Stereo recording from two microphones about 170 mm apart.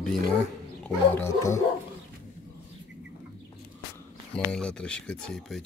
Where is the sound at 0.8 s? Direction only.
10° left (ahead or behind).